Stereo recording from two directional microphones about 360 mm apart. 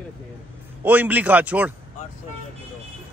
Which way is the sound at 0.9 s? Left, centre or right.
Centre.